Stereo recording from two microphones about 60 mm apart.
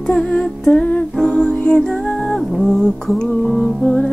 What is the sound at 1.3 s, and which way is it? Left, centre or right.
Music, centre.